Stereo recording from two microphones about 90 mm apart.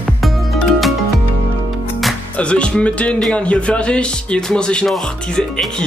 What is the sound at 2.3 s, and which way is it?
Speech, 10° left (ahead or behind).